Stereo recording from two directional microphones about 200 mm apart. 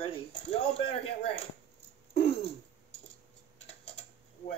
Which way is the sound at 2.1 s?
30° left (ahead or behind).